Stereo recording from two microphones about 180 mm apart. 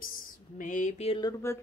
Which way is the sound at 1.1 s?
20° left (ahead or behind).